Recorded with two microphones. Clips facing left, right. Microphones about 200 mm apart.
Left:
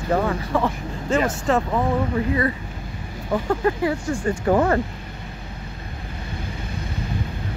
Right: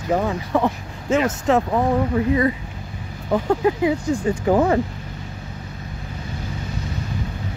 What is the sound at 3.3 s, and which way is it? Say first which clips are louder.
Speech: right 3 dB; 10° right (ahead or behind).